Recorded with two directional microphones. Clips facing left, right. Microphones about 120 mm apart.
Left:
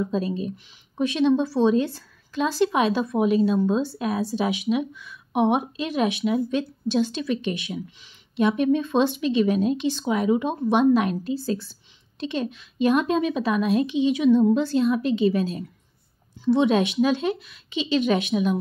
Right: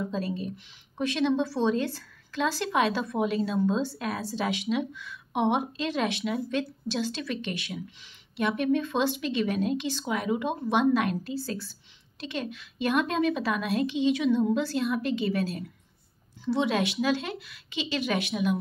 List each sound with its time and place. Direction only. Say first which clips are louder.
0.1 s a woman's voice: left 5 dB; 20° left (ahead or behind)